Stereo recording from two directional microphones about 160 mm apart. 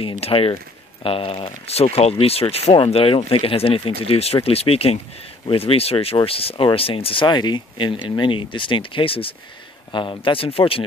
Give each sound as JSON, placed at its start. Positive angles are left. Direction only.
{"t": 0.0, "sound": "speech", "side_deg": 35}